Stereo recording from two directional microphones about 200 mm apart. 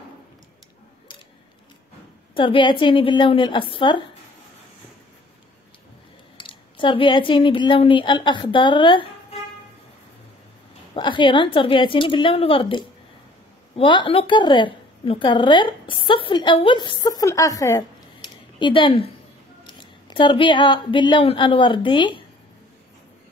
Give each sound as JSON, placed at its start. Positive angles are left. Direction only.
{"t": 2.3, "sound": "a woman's voice", "side_deg": 25}
{"t": 6.3, "sound": "speech", "side_deg": 25}
{"t": 11.0, "sound": "a woman's voice", "side_deg": 25}